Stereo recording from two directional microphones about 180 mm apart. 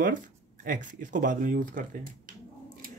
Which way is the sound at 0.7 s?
50° right (ahead or behind).